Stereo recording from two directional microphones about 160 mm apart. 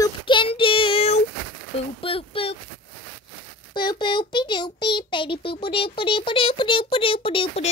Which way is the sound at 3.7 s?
30° left (ahead or behind).